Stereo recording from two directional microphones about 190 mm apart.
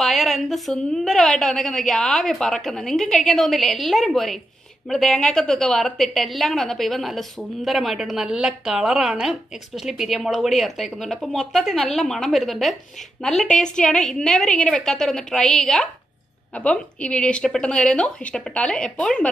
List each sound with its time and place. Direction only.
0.0 s a woman's voice: centre (ahead or behind)